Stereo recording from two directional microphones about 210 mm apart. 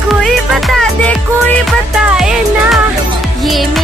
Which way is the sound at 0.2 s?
Centre (ahead or behind).